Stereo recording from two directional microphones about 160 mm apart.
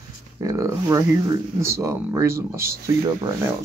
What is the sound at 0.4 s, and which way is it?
Speech, 20° right (ahead or behind).